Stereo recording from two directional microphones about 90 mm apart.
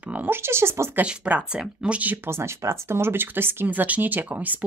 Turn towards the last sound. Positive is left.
turn(degrees=-20)  # may be behind; listen again after turning